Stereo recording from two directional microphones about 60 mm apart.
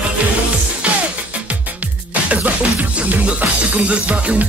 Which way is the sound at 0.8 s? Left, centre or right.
Right.